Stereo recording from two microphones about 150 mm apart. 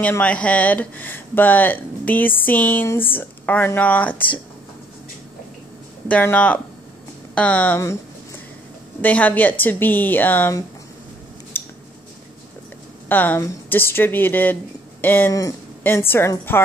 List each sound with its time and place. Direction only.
0.0 s speech: 10° left (ahead or behind)
6.0 s speech: 10° left (ahead or behind)
9.0 s speech: 10° left (ahead or behind)
11.5 s a sound: 15° left (ahead or behind)
13.1 s speech: 10° left (ahead or behind)